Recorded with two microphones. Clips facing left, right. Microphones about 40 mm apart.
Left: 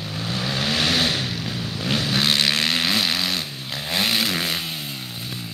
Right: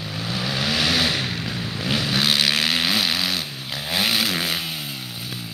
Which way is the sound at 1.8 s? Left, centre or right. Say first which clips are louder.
Even; centre.